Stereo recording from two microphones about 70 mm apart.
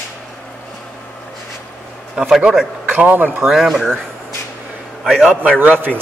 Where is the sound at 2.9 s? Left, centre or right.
Right.